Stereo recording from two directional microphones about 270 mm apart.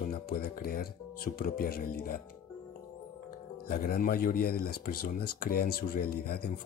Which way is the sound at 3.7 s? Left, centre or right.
Left.